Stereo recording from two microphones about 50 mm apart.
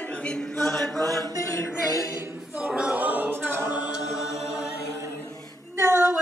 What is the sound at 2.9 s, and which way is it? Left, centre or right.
A capella, right.